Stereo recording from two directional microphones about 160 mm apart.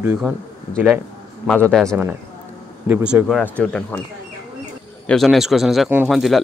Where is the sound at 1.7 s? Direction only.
5° left (ahead or behind).